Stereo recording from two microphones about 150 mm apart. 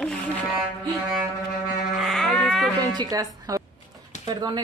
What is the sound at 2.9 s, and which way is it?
A woman's voice, 25° right (ahead or behind).